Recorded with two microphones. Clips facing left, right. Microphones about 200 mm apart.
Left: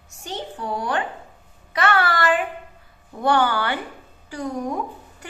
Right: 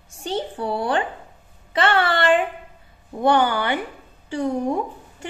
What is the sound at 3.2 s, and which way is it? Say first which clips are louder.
A woman's voice: right 2 dB; 20° right (ahead or behind).